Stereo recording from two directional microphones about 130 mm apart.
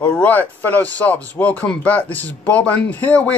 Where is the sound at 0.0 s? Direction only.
10° left (ahead or behind).